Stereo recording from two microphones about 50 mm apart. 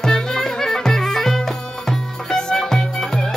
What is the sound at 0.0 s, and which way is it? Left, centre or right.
Music, centre.